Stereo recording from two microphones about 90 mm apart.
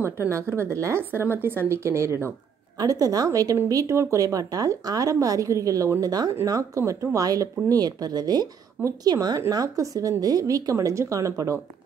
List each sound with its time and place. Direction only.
0.0 s a woman's voice: 30° right (ahead or behind)
2.8 s speech: 40° right (ahead or behind)